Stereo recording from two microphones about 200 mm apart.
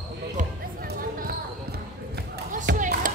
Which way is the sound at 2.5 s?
40° right (ahead or behind).